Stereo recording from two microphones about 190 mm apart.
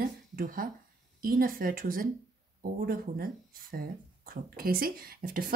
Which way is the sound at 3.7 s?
50° right (ahead or behind).